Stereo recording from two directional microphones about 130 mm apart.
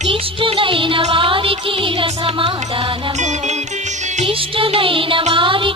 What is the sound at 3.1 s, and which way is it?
Music, 65° right (ahead or behind).